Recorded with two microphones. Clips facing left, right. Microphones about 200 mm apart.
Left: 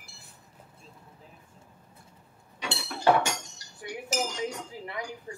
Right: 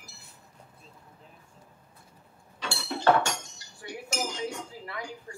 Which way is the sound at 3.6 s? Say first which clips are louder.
Even; 25° right (ahead or behind).